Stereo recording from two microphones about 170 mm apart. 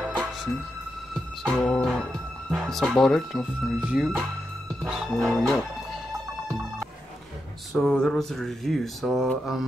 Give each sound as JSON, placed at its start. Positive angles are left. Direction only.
{"t": 0.0, "sound": "music", "side_deg": 0}
{"t": 1.5, "sound": "speech", "side_deg": 5}
{"t": 7.7, "sound": "speech", "side_deg": 5}